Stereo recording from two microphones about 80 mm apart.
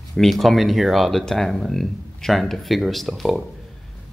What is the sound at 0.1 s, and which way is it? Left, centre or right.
Speech, centre.